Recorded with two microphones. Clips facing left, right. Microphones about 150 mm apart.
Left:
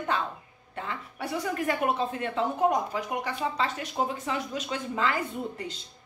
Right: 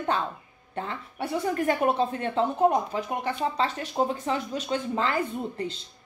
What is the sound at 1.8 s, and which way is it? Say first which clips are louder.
Speech: right 3 dB; 35° right (ahead or behind).